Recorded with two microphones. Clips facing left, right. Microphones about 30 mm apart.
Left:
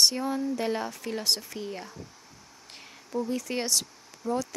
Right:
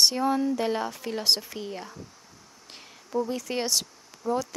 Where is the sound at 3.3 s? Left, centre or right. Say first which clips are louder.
Right 1 dB; centre.